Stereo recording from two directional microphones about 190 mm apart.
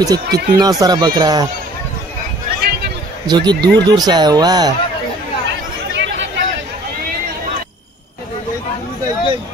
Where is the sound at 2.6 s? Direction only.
55° right (ahead or behind).